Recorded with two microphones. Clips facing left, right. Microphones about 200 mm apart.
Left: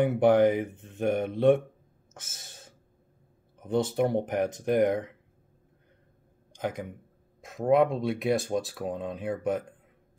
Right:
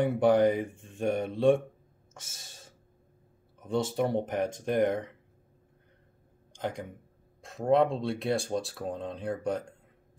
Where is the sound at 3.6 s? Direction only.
20° left (ahead or behind).